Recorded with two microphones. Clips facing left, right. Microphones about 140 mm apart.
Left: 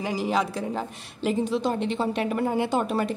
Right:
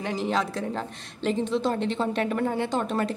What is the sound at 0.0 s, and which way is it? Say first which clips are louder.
A woman's voice: left 1 dB; 5° left (ahead or behind).